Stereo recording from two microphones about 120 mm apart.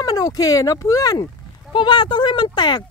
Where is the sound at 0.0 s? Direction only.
30° left (ahead or behind).